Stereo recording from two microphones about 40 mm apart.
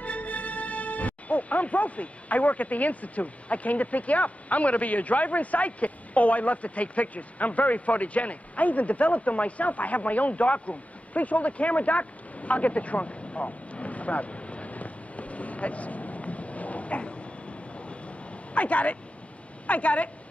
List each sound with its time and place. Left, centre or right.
0.0 s speech: left
17.7 s vehicle: left
19.6 s a woman's voice: left